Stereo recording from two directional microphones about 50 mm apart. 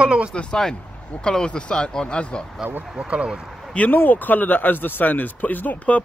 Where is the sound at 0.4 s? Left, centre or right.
Centre.